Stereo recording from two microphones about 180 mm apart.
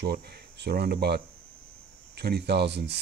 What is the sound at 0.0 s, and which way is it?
Speech, 65° right (ahead or behind).